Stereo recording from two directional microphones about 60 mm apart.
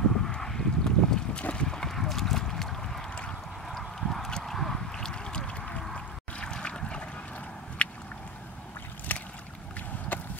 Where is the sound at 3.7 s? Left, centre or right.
Centre; by 7.9 s left.